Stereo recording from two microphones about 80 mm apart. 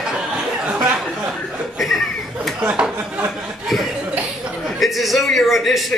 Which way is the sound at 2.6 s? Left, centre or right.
Centre.